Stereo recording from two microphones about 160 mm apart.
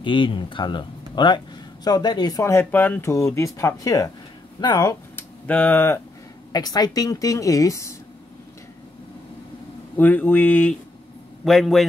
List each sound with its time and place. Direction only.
0.0 s speech: 30° left (ahead or behind)
5.1 s a sound: 10° left (ahead or behind)
6.5 s speech: 25° left (ahead or behind)
9.9 s a man's voice: 10° left (ahead or behind)